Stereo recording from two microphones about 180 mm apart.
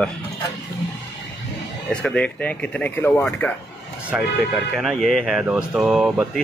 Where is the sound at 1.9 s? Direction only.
5° left (ahead or behind).